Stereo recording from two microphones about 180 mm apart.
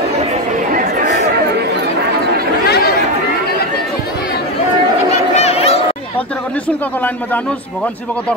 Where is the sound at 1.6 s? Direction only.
65° right (ahead or behind).